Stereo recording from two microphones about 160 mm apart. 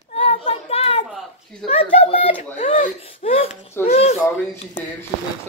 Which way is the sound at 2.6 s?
55° left (ahead or behind).